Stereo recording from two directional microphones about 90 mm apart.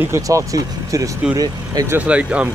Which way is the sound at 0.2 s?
35° right (ahead or behind).